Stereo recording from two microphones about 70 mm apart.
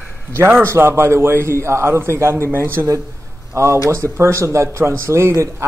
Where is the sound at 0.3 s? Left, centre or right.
Right.